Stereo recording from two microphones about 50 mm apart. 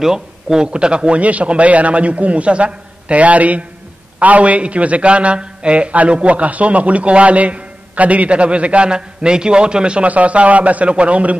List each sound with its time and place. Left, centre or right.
0.0 s a man's voice: centre